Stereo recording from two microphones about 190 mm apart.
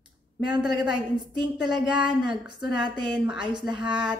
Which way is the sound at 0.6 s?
5° right (ahead or behind).